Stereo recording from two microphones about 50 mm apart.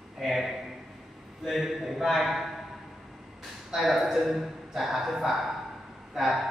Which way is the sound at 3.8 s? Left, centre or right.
Centre.